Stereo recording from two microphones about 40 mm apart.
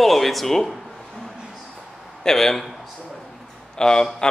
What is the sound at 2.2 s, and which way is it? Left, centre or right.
Speech, centre.